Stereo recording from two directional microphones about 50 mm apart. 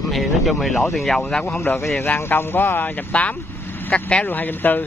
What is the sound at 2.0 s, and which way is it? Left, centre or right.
Speech, left.